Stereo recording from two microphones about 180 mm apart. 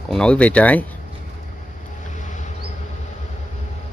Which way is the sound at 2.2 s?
40° left (ahead or behind).